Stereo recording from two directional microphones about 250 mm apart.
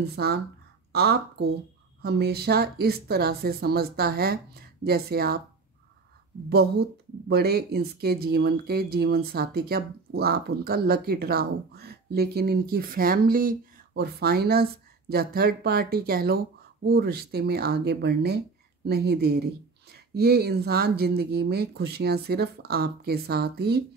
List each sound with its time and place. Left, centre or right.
0.0 s speech: right
6.5 s speech: right